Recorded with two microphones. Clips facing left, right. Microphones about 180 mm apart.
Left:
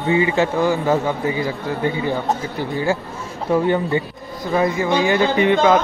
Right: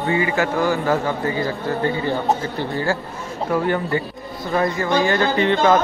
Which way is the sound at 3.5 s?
20° left (ahead or behind).